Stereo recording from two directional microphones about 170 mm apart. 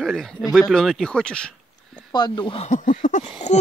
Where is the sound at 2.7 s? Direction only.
50° left (ahead or behind).